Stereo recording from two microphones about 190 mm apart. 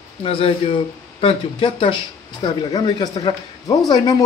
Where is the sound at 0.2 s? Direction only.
30° left (ahead or behind).